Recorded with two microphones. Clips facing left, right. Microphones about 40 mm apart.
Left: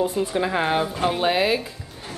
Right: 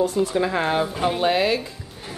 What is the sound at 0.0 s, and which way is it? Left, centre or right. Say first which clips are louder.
Speech: right 2 dB; left.